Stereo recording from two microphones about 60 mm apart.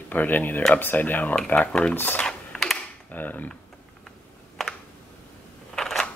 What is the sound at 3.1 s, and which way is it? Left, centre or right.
Speech, left.